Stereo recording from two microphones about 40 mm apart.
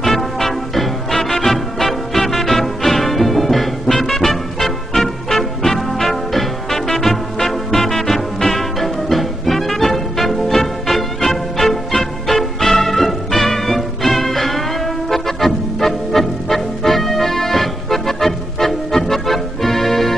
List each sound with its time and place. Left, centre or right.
0.0 s music: centre